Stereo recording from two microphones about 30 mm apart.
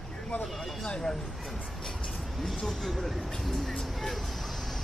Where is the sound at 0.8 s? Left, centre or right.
Left.